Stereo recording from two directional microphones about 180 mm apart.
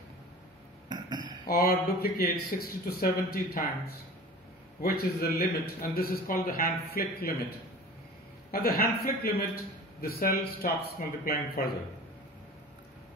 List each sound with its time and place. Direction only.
0.8 s a sound: 25° right (ahead or behind)
1.4 s speech: 55° left (ahead or behind)
8.5 s a man's voice: 55° left (ahead or behind)